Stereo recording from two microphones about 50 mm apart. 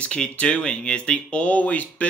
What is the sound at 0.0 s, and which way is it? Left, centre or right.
Speech, left.